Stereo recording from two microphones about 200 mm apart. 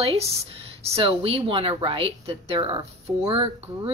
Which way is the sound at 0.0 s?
30° right (ahead or behind).